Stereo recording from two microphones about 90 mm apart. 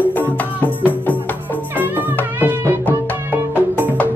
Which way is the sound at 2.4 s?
25° right (ahead or behind).